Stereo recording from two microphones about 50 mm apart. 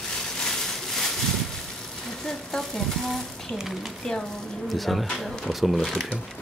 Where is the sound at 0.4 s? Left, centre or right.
Centre.